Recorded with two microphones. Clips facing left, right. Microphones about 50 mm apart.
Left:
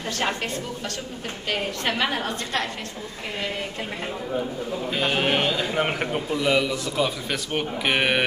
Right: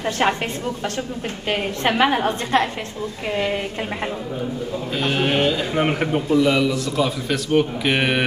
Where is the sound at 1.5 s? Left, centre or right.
Right.